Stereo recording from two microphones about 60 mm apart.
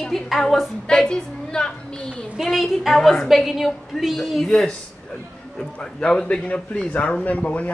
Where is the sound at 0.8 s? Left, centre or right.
Centre.